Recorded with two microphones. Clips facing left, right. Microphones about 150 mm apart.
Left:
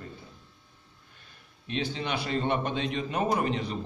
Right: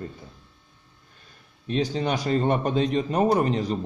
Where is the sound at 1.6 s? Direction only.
40° right (ahead or behind).